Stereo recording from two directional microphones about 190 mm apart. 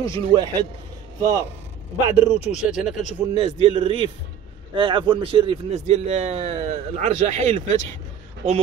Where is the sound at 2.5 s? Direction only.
5° right (ahead or behind).